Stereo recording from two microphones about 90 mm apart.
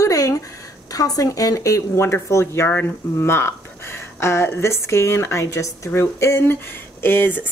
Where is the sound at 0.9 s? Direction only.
40° left (ahead or behind).